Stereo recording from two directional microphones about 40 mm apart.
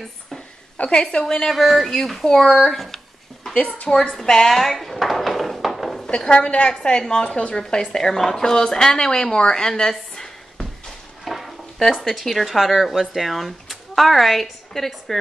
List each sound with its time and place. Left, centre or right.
0.8 s a woman's voice: left
1.5 s a woman's voice: centre
3.9 s a woman's voice: left
4.2 s a sound: centre
6.0 s a woman's voice: left
11.2 s a sound: centre
12.0 s speech: centre